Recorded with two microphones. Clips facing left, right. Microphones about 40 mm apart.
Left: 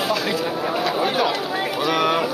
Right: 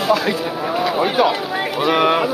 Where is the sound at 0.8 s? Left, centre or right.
Centre.